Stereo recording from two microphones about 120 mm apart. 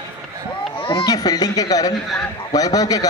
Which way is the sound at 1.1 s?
30° left (ahead or behind).